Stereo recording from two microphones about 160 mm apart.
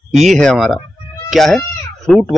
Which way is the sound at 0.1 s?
Centre (ahead or behind).